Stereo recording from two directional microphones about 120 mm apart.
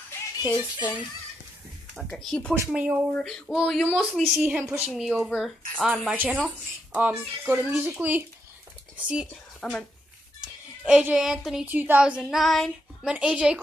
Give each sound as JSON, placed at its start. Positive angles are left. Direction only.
{"t": 0.4, "sound": "music", "side_deg": 40}
{"t": 2.1, "sound": "speech", "side_deg": 5}
{"t": 2.7, "sound": "speech", "side_deg": -10}
{"t": 3.1, "sound": "speech", "side_deg": 5}
{"t": 4.9, "sound": "speech", "side_deg": -5}
{"t": 6.9, "sound": "speech", "side_deg": -15}
{"t": 9.6, "sound": "speech", "side_deg": 5}
{"t": 10.4, "sound": "a child's voice", "side_deg": -10}
{"t": 11.6, "sound": "speech", "side_deg": -15}